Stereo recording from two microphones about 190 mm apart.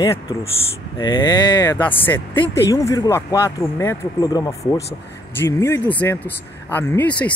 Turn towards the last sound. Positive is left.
turn(degrees=5)  # may be behind; listen again after turning